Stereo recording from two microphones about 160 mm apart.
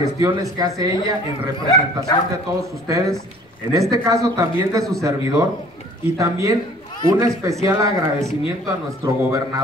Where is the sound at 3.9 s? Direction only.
20° right (ahead or behind).